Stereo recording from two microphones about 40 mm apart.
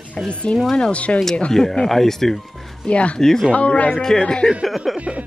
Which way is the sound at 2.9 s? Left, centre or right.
Left.